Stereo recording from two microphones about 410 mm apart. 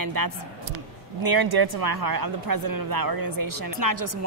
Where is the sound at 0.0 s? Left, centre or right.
Right.